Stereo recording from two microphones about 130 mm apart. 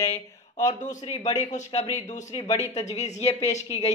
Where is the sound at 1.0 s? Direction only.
55° left (ahead or behind).